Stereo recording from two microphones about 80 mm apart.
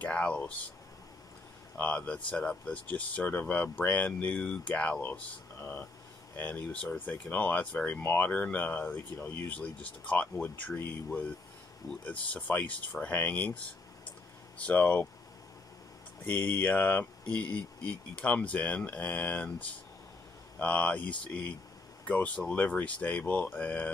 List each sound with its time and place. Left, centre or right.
0.0 s speech: centre
1.8 s speech: centre
5.6 s speech: left
9.1 s speech: left
9.5 s speech: centre
14.6 s speech: centre
16.3 s speech: centre
20.5 s speech: centre